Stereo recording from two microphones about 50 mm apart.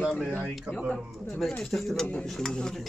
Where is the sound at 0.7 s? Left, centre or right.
Right.